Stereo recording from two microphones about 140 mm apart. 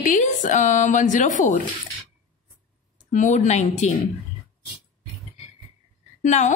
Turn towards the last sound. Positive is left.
turn(degrees=55)  # may be behind; listen again after turning